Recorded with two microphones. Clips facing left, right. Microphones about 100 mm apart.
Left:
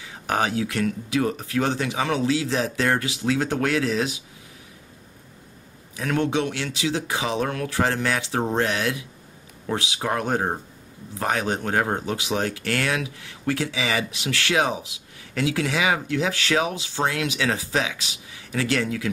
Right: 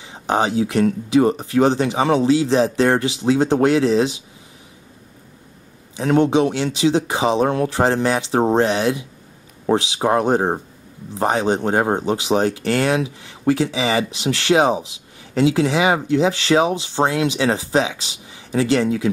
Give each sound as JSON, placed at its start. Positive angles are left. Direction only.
{"t": 0.0, "sound": "speech", "side_deg": -25}
{"t": 5.9, "sound": "speech", "side_deg": -25}